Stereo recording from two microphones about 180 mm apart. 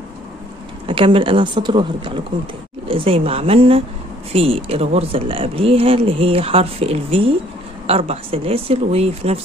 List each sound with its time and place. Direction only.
0.8 s a woman's voice: 30° right (ahead or behind)